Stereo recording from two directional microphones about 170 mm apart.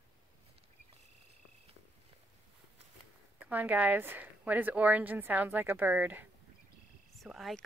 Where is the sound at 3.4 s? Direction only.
10° right (ahead or behind).